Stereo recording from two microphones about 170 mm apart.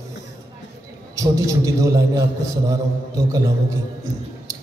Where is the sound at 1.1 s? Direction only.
20° right (ahead or behind).